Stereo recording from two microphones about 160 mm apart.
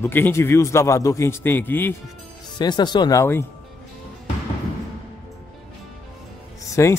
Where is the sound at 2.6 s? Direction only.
25° left (ahead or behind).